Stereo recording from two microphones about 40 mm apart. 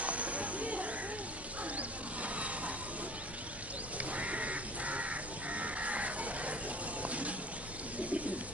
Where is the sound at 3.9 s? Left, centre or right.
Right.